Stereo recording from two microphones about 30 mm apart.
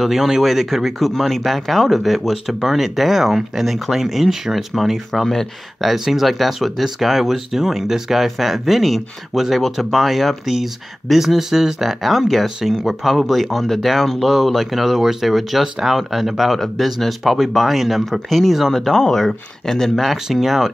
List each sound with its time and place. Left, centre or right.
0.0 s speech: centre
5.2 s speech: centre
5.8 s speech: centre
15.2 s speech: centre
15.6 s speech: centre
16.5 s speech: centre
20.3 s speech: centre